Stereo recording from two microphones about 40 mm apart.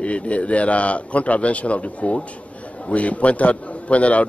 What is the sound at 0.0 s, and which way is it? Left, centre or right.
A man's voice, left.